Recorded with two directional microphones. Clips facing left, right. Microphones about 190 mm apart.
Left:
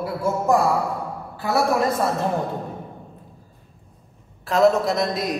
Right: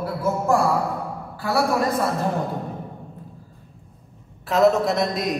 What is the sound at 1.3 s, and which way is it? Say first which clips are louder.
Speech: left 1 dB; 20° left (ahead or behind).